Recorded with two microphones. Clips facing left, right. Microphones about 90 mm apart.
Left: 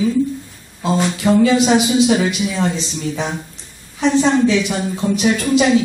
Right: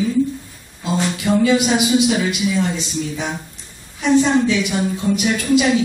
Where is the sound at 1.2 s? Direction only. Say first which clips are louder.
Left 3 dB; 30° left (ahead or behind).